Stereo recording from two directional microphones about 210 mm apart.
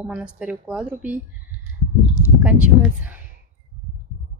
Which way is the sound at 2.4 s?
5° right (ahead or behind).